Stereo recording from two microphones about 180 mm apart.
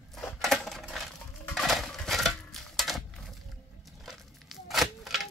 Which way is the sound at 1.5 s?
Centre (ahead or behind).